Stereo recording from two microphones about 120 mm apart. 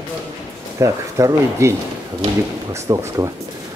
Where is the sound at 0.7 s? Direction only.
25° right (ahead or behind).